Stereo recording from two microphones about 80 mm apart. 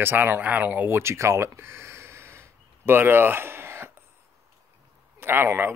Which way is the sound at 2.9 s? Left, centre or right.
Right.